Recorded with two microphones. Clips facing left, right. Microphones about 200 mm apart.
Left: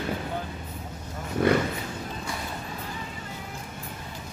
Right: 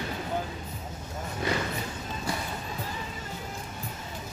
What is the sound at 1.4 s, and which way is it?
Roaring cats, 55° left (ahead or behind).